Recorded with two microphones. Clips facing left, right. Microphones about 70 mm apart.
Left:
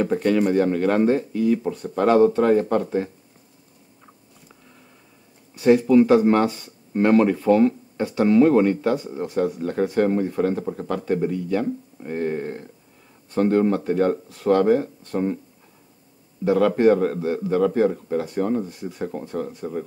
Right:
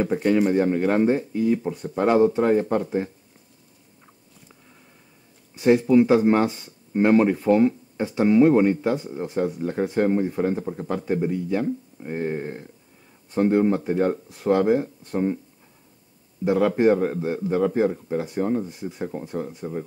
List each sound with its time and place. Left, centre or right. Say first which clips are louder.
0.0 s speech: left 1 dB; centre
5.5 s speech: left 2 dB; right
16.4 s speech: left 2 dB; centre
17.8 s speech: left 2 dB; centre
18.1 s speech: left 1 dB; centre